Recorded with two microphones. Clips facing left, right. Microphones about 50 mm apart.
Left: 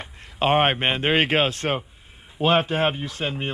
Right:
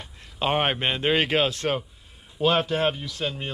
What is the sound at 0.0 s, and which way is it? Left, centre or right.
Speech, left.